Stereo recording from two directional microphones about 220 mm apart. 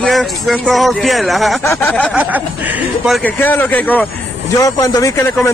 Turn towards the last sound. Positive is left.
turn(degrees=15)  # may be behind; listen again after turning